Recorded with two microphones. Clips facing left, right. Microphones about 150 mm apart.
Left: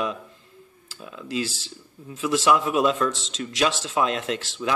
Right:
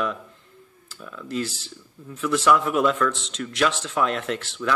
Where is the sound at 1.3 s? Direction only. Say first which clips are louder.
Even; 90° left.